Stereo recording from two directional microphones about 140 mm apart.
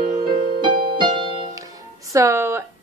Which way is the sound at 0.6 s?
30° right (ahead or behind).